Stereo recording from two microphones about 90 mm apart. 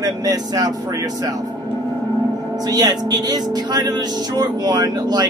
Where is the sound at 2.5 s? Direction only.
45° right (ahead or behind).